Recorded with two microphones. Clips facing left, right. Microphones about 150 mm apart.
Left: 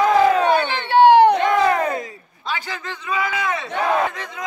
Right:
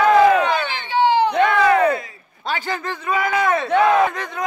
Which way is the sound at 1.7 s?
40° left (ahead or behind).